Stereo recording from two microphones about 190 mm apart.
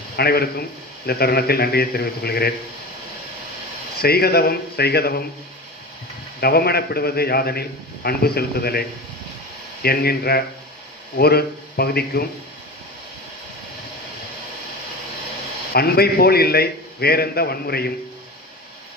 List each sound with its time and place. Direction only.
0.1 s a man's voice: 55° left (ahead or behind)
4.0 s a man's voice: 55° left (ahead or behind)
6.4 s a man's voice: 55° left (ahead or behind)
9.8 s a man's voice: 55° left (ahead or behind)
15.7 s a man's voice: 55° left (ahead or behind)